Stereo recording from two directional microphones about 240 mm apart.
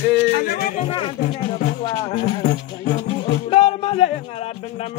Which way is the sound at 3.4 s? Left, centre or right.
Left.